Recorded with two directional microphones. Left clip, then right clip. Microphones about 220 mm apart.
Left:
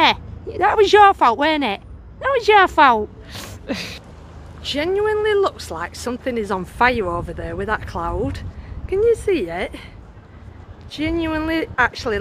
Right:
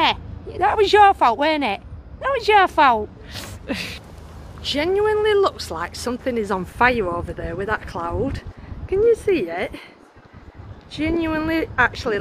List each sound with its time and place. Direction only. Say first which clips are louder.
0.0 s speech: left 3 dB; 20° left (ahead or behind)
4.6 s speech: even; 5° right (ahead or behind)
10.9 s speech: even; centre (ahead or behind)